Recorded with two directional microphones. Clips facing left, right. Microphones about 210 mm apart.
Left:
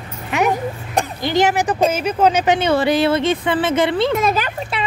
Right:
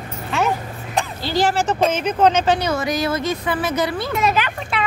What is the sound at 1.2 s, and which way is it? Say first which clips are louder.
Speech: left 3 dB; 20° left (ahead or behind).